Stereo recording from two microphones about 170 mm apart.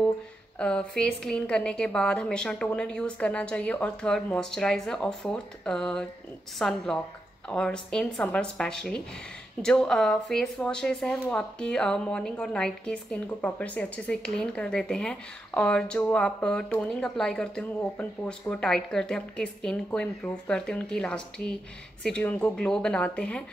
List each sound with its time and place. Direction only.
0.6 s speech: 5° left (ahead or behind)